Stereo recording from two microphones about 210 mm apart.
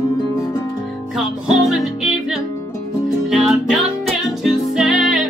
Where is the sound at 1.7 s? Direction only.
Centre (ahead or behind).